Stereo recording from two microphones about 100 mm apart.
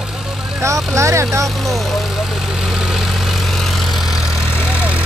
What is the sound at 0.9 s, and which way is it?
Speech, 30° right (ahead or behind).